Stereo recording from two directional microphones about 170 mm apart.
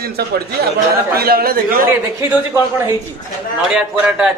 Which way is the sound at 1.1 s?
65° right (ahead or behind).